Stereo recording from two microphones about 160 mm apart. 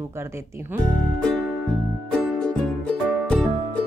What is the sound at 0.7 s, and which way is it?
Speech, 10° right (ahead or behind).